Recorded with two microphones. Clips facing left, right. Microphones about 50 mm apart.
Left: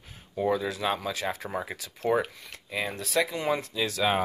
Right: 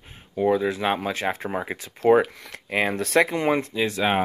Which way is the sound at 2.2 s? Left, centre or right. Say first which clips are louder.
Right 7 dB; right.